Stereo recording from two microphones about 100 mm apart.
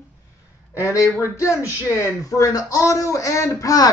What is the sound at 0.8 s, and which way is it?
Speech, 30° left (ahead or behind).